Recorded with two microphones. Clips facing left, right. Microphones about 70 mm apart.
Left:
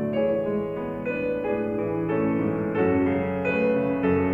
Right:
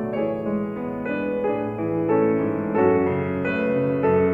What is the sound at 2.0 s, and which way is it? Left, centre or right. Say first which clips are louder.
Music: right 7 dB; right.